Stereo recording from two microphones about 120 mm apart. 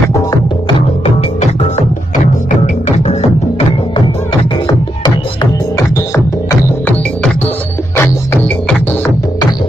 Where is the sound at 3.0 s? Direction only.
60° left (ahead or behind).